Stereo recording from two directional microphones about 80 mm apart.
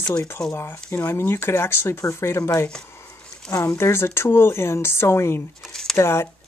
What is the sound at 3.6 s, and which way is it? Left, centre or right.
Speech, left.